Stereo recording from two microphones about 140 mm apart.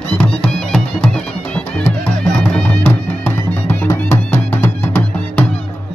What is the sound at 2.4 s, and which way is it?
Music, 10° left (ahead or behind).